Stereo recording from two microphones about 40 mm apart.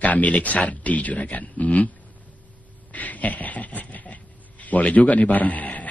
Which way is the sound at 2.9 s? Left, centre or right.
Left.